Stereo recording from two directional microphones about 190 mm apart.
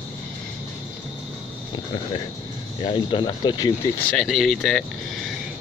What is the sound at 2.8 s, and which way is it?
Speech, 25° left (ahead or behind).